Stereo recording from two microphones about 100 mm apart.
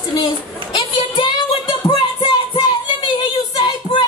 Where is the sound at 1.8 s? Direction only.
55° left (ahead or behind).